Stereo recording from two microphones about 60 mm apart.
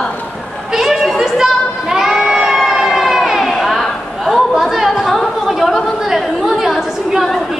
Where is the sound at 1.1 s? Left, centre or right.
Centre.